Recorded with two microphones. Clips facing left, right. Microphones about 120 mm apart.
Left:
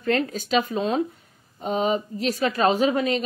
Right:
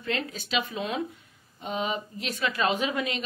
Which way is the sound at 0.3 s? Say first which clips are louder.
Left 7 dB; 45° left (ahead or behind).